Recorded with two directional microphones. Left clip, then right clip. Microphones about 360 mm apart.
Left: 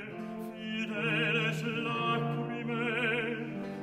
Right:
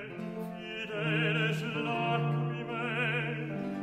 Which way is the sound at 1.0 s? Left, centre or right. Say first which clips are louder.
Left 1 dB; left.